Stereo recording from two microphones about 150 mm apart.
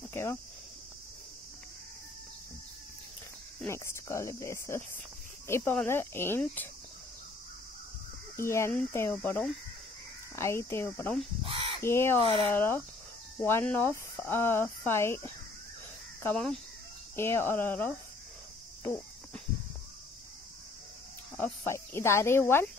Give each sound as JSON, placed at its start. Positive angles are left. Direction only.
{"t": 0.1, "sound": "speech", "side_deg": 15}
{"t": 3.6, "sound": "speech", "side_deg": 20}
{"t": 8.4, "sound": "speech", "side_deg": 20}
{"t": 11.4, "sound": "caw", "side_deg": -35}
{"t": 11.8, "sound": "speech", "side_deg": 15}
{"t": 17.1, "sound": "speech", "side_deg": 15}
{"t": 21.4, "sound": "speech", "side_deg": 15}